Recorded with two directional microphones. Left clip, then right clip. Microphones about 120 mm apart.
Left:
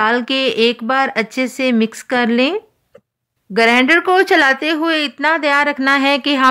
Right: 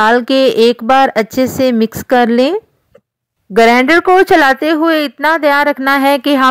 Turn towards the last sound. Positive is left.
turn(degrees=-40)  # may be behind; listen again after turning